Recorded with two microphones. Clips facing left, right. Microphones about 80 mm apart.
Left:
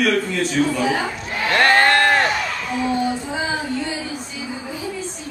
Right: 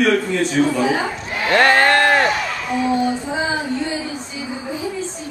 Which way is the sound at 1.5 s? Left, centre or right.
Centre.